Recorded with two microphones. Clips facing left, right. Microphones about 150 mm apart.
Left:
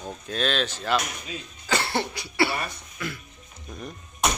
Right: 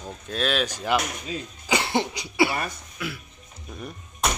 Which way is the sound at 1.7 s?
15° right (ahead or behind).